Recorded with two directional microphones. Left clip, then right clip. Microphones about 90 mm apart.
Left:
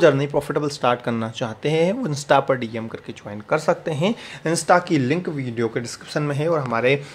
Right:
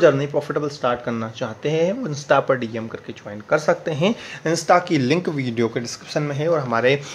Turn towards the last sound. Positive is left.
turn(degrees=15)  # may be behind; listen again after turning